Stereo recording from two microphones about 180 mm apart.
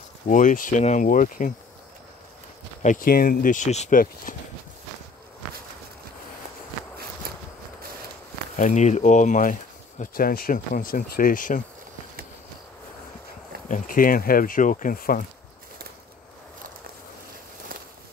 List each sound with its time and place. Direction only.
0.3 s speech: 45° left (ahead or behind)
2.8 s speech: 45° left (ahead or behind)
4.0 s speech: 50° left (ahead or behind)
7.3 s a sound: 55° right (ahead or behind)
8.5 s speech: 40° left (ahead or behind)
13.7 s speech: 45° left (ahead or behind)